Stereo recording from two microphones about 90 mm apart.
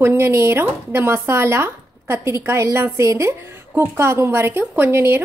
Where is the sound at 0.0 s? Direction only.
30° right (ahead or behind).